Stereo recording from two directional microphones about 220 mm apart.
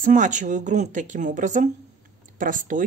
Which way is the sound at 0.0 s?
35° right (ahead or behind).